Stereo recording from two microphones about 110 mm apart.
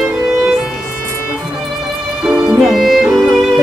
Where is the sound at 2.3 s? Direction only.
10° right (ahead or behind).